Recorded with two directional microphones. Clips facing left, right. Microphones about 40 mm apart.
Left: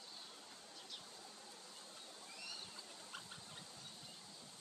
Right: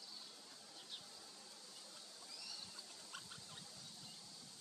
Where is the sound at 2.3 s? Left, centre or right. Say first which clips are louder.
Left 3 dB; left.